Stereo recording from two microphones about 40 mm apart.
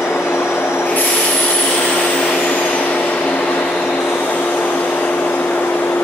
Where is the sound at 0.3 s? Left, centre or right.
Left.